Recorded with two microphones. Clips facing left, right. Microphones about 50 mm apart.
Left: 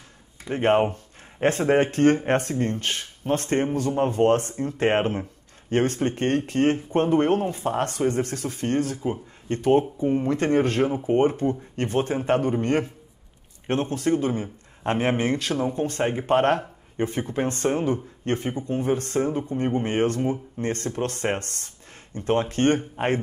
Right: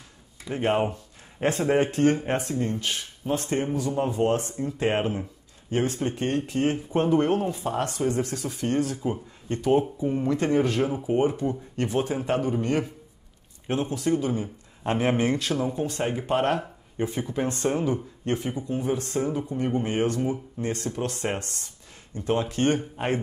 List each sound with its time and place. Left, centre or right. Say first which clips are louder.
0.5 s speech: left 4 dB; left
10.8 s speech: left 3 dB; left
16.0 s speech: left 4 dB; left
16.3 s speech: left 4 dB; left